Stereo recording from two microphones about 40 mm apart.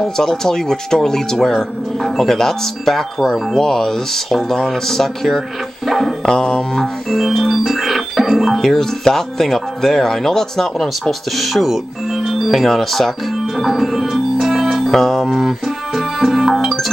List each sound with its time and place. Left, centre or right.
0.2 s speech: centre
5.9 s music: centre
6.2 s speech: centre
6.8 s organ: centre
8.5 s speech: centre
14.9 s music: centre
15.2 s music: centre